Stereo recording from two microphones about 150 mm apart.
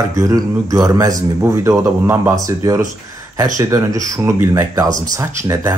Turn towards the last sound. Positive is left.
turn(degrees=-20)  # may be behind; listen again after turning